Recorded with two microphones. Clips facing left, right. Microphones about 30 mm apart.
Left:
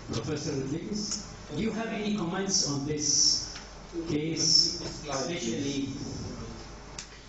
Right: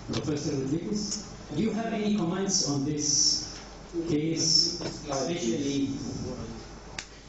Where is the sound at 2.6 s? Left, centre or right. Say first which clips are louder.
Right 2 dB; centre.